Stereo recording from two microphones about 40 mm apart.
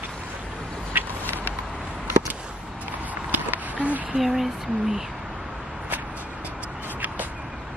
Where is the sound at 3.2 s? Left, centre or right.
Right.